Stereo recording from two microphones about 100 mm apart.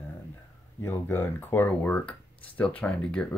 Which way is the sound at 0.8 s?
20° left (ahead or behind).